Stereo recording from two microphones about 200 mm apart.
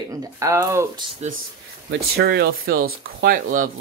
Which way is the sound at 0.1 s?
15° right (ahead or behind).